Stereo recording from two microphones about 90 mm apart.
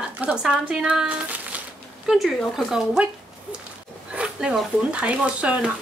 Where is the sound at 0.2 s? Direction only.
10° right (ahead or behind).